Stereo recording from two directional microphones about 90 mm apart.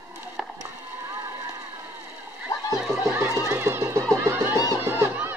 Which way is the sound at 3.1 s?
25° right (ahead or behind).